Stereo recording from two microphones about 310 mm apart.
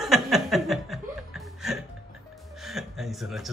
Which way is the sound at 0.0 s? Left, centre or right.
Centre.